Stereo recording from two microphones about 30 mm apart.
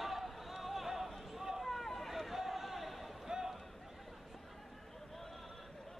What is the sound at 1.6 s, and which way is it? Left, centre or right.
Vehicle, centre.